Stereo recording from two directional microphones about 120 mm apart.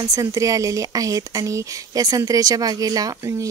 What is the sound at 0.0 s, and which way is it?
Speech, 30° right (ahead or behind).